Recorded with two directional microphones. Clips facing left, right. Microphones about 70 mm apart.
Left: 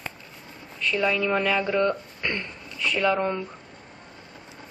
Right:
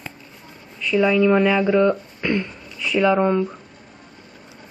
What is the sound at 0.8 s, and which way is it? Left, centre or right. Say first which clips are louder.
Speech: right 7 dB; centre.